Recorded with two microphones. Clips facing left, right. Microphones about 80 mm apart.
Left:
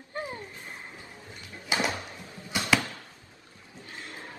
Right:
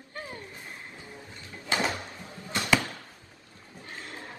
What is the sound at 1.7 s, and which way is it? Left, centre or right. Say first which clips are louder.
Music: even; right.